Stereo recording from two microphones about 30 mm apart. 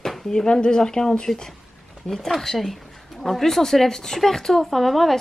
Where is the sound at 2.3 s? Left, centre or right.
Centre.